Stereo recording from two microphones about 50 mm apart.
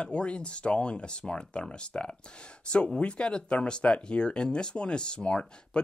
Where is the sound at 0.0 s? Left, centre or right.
Left.